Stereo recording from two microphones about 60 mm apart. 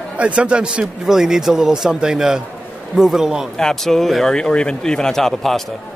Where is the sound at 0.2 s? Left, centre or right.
Centre.